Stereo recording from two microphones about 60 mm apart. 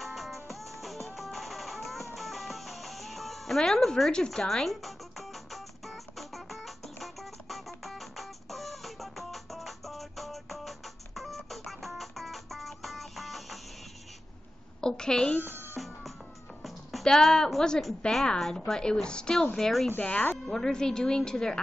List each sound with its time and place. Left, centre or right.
0.0 s music: centre
14.8 s a sound: centre
15.4 s cat: right
16.6 s a woman's voice: centre
20.0 s speech: left
20.4 s a woman's voice: centre